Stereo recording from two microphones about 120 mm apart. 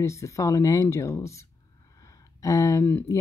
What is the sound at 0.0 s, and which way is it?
Speech, 25° left (ahead or behind).